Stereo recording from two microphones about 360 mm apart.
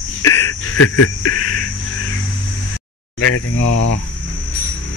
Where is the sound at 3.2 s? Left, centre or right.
Left.